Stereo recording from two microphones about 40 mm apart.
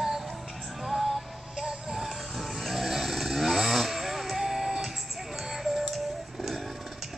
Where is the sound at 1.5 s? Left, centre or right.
Centre.